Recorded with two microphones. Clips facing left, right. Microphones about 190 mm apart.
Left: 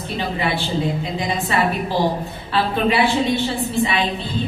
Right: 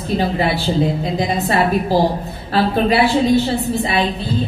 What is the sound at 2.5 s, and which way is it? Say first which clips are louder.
A woman's voice: right 4 dB; 40° right (ahead or behind).